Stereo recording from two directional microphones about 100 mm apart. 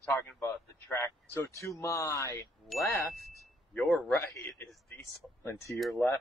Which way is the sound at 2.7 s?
Centre (ahead or behind).